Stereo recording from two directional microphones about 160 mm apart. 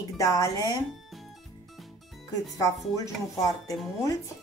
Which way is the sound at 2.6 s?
20° left (ahead or behind).